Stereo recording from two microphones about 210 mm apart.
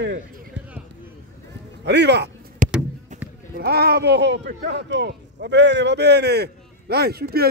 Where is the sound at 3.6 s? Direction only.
50° right (ahead or behind).